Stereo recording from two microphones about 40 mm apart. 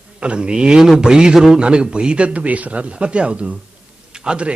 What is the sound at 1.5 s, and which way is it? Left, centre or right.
A man's voice, right.